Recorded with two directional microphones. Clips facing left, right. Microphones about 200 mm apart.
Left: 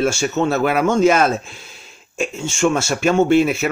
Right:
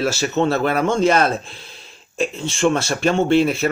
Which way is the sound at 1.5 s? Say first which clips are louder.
Even; 35° right (ahead or behind).